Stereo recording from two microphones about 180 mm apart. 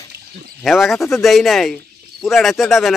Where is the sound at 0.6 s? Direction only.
Centre (ahead or behind).